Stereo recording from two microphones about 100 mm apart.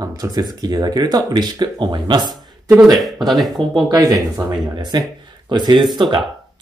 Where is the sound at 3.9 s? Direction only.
40° right (ahead or behind).